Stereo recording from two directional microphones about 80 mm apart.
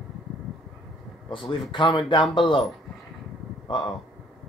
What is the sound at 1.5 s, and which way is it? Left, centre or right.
Speech, left.